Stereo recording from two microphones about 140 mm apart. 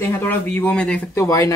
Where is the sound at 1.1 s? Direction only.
20° left (ahead or behind).